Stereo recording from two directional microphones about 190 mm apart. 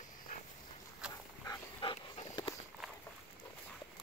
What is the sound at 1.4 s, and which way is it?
Dog, 15° left (ahead or behind).